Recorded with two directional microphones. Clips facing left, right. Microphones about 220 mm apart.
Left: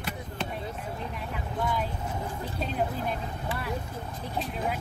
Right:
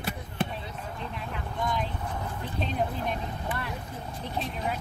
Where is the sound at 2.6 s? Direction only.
5° left (ahead or behind).